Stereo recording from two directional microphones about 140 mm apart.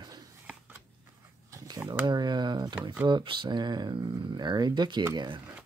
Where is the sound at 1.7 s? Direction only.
30° right (ahead or behind).